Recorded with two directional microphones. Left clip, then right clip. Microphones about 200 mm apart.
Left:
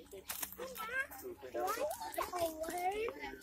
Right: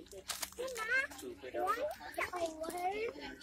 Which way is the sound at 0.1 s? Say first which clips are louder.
Right 4 dB; 25° right (ahead or behind).